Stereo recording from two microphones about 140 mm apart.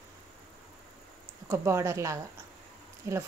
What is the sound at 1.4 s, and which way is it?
Speech, 20° right (ahead or behind).